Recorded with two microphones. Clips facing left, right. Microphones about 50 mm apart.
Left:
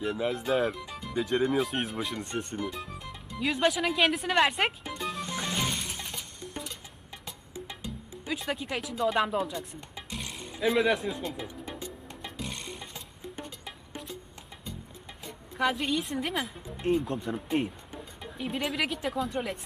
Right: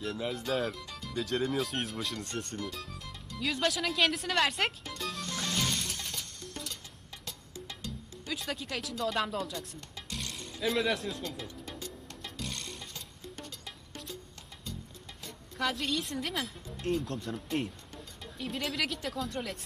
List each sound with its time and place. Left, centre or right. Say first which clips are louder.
0.0 s speech: left 5 dB; centre
7.2 s music: left 3 dB; centre
15.2 s speech: left 5 dB; centre